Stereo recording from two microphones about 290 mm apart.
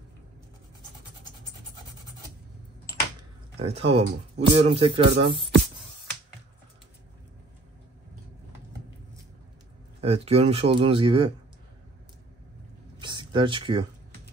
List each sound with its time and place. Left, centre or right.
3.6 s speech: right
9.9 s speech: right
13.0 s a sound: centre